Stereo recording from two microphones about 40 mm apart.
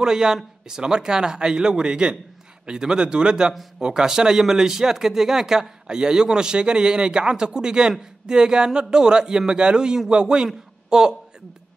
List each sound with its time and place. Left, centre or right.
0.0 s a man's voice: centre